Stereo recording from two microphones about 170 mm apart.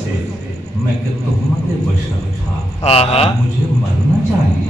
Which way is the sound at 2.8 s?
35° left (ahead or behind).